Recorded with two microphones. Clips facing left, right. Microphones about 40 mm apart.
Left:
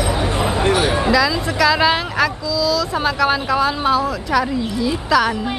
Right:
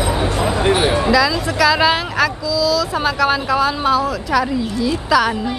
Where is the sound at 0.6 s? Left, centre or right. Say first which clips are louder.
Right 2 dB; right.